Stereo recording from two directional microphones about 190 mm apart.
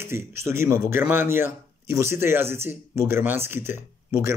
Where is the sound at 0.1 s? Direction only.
15° right (ahead or behind).